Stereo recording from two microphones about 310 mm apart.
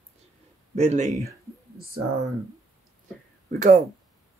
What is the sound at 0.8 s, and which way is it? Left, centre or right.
Speech, right.